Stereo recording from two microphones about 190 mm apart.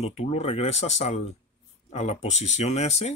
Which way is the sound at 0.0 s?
35° left (ahead or behind).